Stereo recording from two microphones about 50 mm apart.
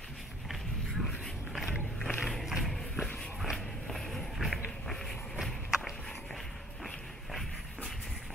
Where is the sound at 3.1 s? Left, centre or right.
Left.